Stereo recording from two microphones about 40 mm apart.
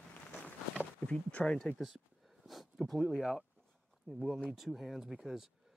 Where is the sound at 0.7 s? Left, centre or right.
Left.